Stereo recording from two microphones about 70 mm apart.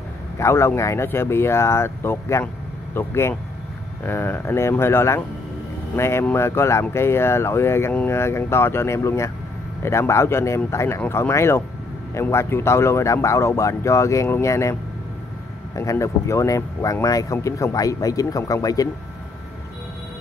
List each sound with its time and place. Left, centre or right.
0.4 s a man's voice: left